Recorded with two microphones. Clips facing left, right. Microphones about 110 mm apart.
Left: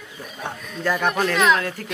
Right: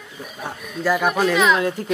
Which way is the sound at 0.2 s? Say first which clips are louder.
Right 1 dB; 10° right (ahead or behind).